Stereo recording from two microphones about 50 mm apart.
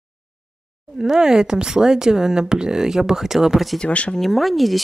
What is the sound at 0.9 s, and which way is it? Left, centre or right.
Speech, centre.